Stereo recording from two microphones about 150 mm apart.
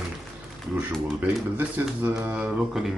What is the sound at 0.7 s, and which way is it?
Speech, 10° right (ahead or behind).